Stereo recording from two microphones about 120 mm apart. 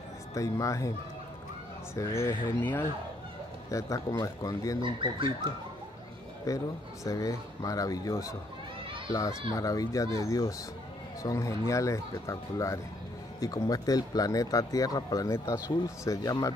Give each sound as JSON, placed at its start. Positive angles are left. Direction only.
{"t": 0.3, "sound": "speech", "side_deg": 25}
{"t": 2.0, "sound": "speech", "side_deg": 25}
{"t": 6.5, "sound": "speech", "side_deg": 30}
{"t": 9.5, "sound": "speech", "side_deg": 30}